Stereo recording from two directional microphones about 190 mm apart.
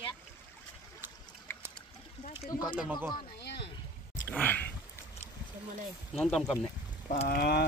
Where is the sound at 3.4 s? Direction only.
65° left (ahead or behind).